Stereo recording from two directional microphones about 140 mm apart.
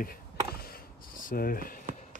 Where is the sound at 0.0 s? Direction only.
90° left.